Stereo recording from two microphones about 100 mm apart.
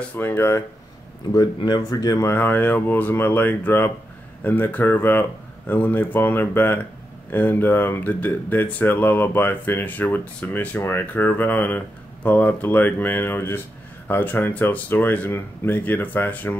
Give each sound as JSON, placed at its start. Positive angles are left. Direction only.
{"t": 0.1, "sound": "speech", "side_deg": 20}
{"t": 1.3, "sound": "speech", "side_deg": 40}